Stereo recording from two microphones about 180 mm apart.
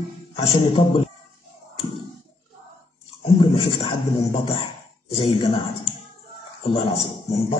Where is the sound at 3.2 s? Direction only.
25° left (ahead or behind).